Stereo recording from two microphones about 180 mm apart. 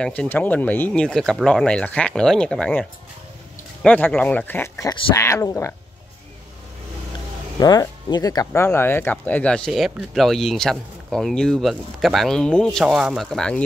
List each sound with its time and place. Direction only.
0.0 s speech: 5° left (ahead or behind)
7.5 s speech: 20° left (ahead or behind); by 13.6 s 5° left (ahead or behind)